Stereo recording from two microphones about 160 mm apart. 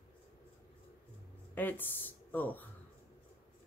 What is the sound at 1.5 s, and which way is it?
Speech, 10° left (ahead or behind).